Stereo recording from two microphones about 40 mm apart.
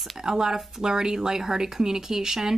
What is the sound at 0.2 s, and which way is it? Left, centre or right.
Speech, centre.